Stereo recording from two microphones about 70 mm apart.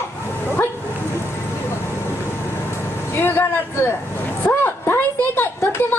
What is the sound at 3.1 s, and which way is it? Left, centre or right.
A woman's voice, left.